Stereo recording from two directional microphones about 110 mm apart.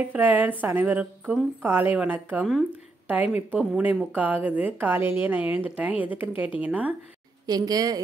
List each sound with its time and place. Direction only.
0.1 s a woman's voice: 15° right (ahead or behind)
7.4 s a woman's voice: 35° right (ahead or behind)